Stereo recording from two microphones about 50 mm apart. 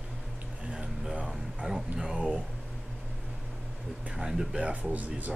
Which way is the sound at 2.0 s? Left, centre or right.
Centre.